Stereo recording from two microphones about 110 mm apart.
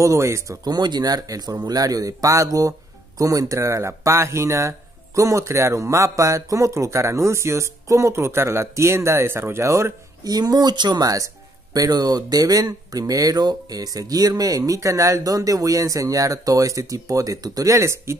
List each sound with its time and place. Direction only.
0.0 s speech: 30° right (ahead or behind)
0.7 s a man's voice: 40° right (ahead or behind)